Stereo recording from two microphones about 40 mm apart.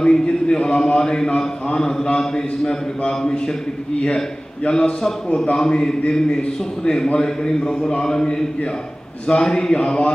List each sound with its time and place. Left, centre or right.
0.0 s a sound: left
1.8 s a man's voice: centre
4.6 s a man's voice: left